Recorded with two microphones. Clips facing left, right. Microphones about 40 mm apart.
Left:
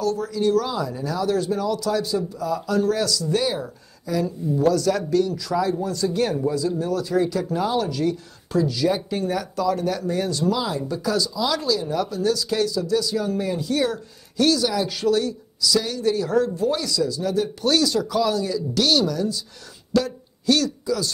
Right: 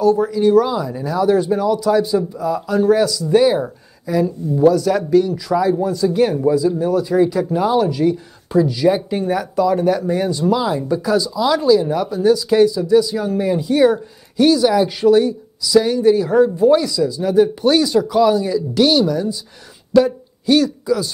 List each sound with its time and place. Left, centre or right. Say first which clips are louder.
0.0 s speech: right 8 dB; centre